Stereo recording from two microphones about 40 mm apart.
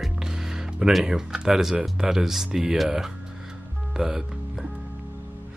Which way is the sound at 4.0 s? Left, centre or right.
Centre.